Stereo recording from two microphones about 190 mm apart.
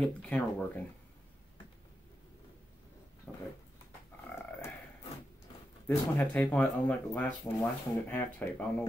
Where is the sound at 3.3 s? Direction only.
10° left (ahead or behind).